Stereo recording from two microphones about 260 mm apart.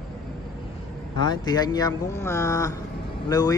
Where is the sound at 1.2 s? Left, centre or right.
Centre.